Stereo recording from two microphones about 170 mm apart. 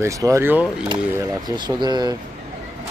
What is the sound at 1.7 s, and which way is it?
Speech, 25° right (ahead or behind).